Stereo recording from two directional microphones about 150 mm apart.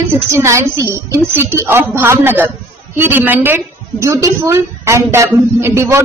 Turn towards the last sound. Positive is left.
turn(degrees=-15)  # may be behind; listen again after turning